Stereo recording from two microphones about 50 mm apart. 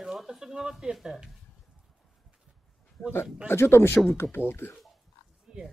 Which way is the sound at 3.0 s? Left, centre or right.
Left.